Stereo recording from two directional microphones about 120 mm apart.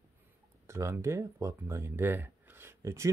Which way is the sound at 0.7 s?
25° right (ahead or behind).